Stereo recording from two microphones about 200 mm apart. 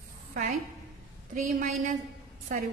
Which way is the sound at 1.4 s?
40° right (ahead or behind).